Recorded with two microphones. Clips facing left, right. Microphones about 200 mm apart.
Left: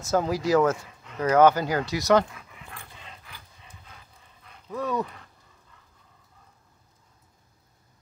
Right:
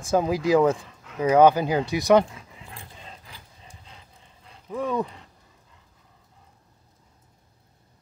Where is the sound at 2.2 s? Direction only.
30° right (ahead or behind).